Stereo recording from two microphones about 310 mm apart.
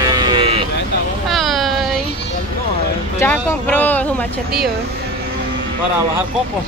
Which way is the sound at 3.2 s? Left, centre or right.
Centre.